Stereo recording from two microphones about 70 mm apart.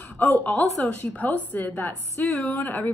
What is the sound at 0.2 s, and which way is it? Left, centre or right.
A woman's voice, left.